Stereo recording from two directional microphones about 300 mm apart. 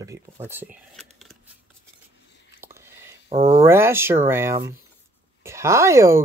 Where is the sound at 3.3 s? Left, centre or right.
Centre.